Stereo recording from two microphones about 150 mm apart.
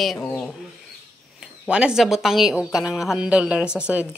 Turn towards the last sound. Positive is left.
turn(degrees=-5)  # may be behind; listen again after turning